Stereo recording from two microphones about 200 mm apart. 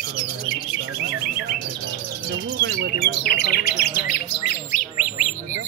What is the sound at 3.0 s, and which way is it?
Bird, 55° left (ahead or behind).